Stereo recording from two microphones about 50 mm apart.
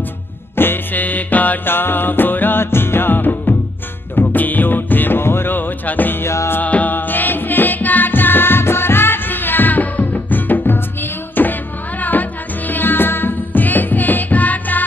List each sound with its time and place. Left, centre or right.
0.6 s music: left
1.7 s music: left
5.2 s music: left
6.2 s music: left
6.6 s music: left